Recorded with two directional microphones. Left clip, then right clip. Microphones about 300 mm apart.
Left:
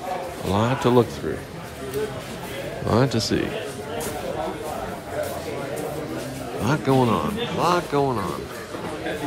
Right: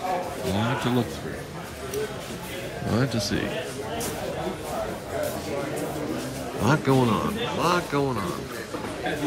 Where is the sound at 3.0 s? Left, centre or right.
Centre.